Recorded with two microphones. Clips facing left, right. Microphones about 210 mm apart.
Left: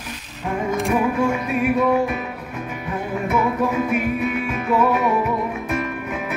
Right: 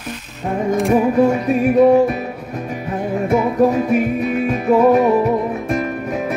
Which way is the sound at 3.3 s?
35° right (ahead or behind).